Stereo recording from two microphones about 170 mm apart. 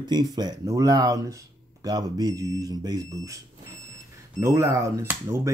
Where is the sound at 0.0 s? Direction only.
25° right (ahead or behind).